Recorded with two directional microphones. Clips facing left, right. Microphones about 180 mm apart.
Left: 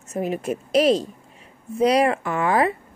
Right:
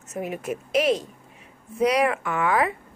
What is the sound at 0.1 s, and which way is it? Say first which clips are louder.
A woman's voice: left 4 dB; 30° left (ahead or behind).